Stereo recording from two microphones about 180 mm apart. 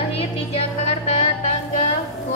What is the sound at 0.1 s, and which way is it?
Music, 35° left (ahead or behind).